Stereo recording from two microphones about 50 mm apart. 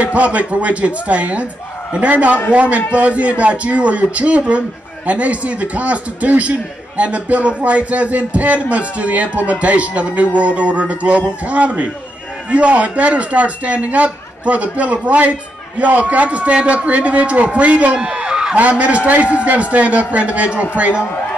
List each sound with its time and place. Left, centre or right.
0.0 s a man's voice: right
17.9 s a sound: centre
18.6 s a man's voice: right